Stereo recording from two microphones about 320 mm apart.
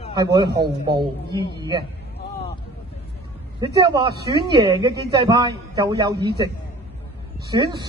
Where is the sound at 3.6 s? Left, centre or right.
Centre.